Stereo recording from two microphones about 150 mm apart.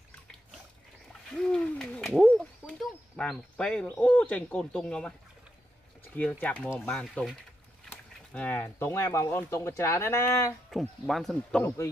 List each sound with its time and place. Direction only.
1.3 s owl: 5° left (ahead or behind)
2.8 s speech: centre (ahead or behind)
6.1 s speech: 10° left (ahead or behind)
10.7 s speech: centre (ahead or behind)
11.6 s a man's voice: 20° left (ahead or behind)